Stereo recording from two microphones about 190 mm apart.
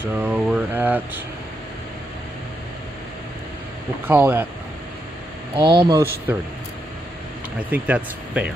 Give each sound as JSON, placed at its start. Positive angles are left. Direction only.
{"t": 0.0, "sound": "speech", "side_deg": -10}
{"t": 4.1, "sound": "speech", "side_deg": -10}
{"t": 5.6, "sound": "speech", "side_deg": -20}
{"t": 7.7, "sound": "speech", "side_deg": -5}